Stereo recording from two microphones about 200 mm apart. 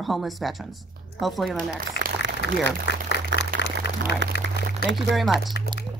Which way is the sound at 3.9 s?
60° left (ahead or behind).